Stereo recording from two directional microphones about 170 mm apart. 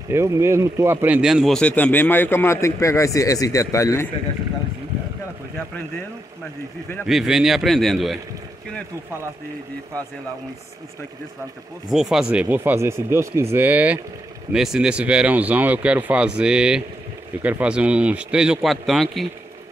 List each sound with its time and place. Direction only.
0.1 s speech: 15° right (ahead or behind); by 4.1 s 15° left (ahead or behind)
7.1 s speech: centre (ahead or behind)
11.9 s speech: 5° right (ahead or behind)